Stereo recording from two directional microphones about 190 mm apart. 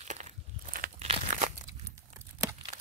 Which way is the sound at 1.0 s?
35° right (ahead or behind).